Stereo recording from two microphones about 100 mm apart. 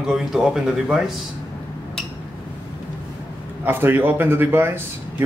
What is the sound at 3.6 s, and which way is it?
Speech, 20° right (ahead or behind).